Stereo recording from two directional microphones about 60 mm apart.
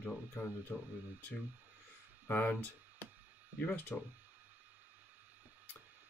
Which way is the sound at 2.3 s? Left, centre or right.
Left.